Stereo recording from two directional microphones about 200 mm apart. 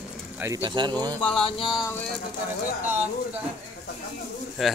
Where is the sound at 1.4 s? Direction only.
25° left (ahead or behind).